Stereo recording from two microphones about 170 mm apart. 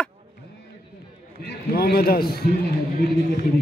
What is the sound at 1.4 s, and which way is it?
A man's voice, 70° left (ahead or behind).